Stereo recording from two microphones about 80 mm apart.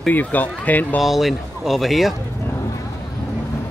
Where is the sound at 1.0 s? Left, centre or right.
Centre.